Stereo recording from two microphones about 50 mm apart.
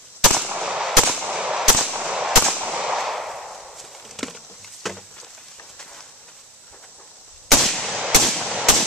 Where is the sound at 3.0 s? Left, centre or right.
Centre.